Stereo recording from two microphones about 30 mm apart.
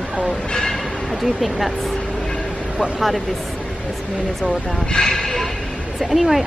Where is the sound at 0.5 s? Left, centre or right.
Left.